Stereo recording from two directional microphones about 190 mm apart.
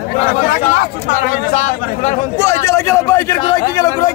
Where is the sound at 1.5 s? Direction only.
40° left (ahead or behind).